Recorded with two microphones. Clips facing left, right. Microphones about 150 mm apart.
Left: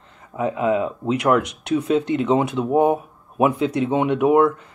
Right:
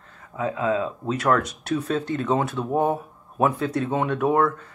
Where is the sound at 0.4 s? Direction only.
20° left (ahead or behind).